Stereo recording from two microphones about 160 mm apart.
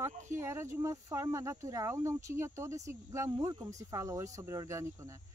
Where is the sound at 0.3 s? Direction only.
15° right (ahead or behind).